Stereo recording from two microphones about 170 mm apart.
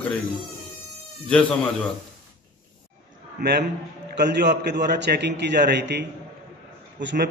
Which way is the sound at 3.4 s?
75° right (ahead or behind).